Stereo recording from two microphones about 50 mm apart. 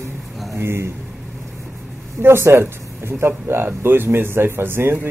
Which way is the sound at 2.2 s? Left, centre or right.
Right.